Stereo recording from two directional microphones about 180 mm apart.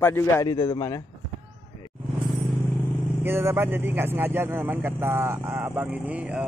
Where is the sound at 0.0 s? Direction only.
15° left (ahead or behind).